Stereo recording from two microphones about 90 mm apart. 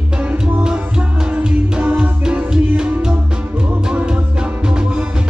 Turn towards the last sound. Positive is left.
turn(degrees=-10)  # may be behind; listen again after turning